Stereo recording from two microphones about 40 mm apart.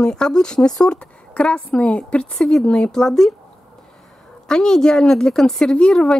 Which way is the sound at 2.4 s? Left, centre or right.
Centre.